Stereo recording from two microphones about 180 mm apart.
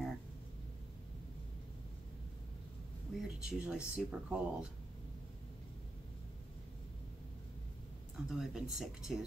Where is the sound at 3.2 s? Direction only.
5° right (ahead or behind).